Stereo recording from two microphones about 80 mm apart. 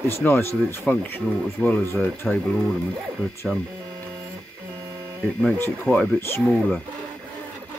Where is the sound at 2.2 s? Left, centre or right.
Centre.